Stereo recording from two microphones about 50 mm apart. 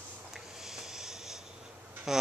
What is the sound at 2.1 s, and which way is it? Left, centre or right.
Speech, centre.